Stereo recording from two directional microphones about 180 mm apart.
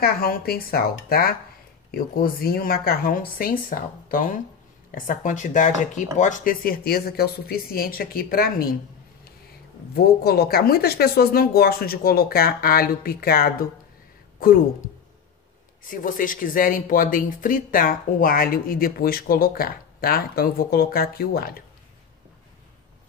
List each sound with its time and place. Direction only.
0.0 s speech: 55° left (ahead or behind)
9.9 s speech: 60° left (ahead or behind)
15.9 s speech: 50° left (ahead or behind)